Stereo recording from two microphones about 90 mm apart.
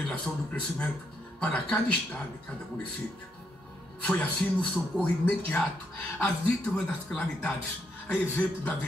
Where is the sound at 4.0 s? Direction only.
10° left (ahead or behind).